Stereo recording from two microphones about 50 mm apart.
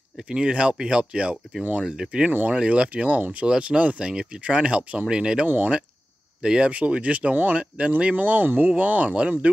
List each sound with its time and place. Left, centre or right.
0.3 s speech: centre; by 3.4 s right
3.4 s speech: right
6.7 s speech: right
8.2 s speech: right